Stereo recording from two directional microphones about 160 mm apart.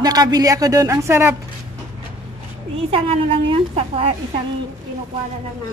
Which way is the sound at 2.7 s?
35° right (ahead or behind).